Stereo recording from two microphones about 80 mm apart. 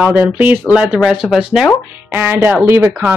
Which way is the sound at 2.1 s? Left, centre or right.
Right.